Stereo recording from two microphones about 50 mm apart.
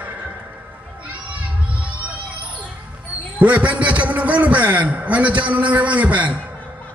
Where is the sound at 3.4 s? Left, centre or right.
Right.